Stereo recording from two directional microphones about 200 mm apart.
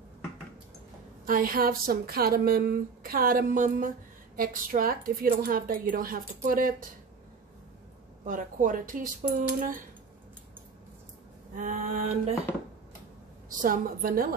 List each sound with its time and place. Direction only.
1.2 s speech: 45° right (ahead or behind)
8.3 s speech: 40° right (ahead or behind)
11.5 s speech: 40° right (ahead or behind)
13.5 s speech: 45° right (ahead or behind)